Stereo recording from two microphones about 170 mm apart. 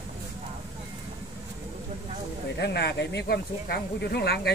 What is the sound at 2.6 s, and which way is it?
Speech, 80° left.